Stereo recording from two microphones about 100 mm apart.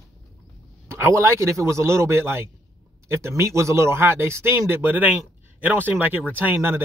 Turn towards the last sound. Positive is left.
turn(degrees=-20)  # may be behind; listen again after turning